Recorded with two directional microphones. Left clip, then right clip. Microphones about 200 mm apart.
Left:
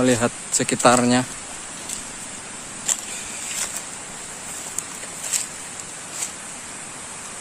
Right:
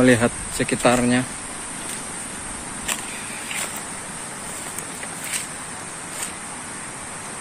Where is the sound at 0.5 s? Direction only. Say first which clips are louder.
Left 4 dB; 25° left (ahead or behind).